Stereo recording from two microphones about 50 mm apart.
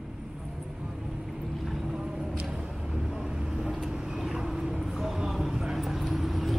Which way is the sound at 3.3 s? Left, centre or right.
Centre.